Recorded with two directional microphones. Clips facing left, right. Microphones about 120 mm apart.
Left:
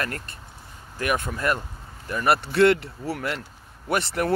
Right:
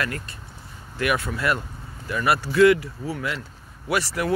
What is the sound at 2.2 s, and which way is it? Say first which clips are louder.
Speech: right 2 dB; 60° left (ahead or behind).